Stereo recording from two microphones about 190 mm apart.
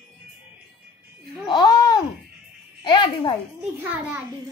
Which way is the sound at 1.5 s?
20° left (ahead or behind).